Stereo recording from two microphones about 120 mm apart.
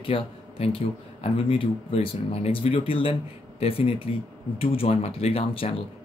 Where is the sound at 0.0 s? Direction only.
50° left (ahead or behind).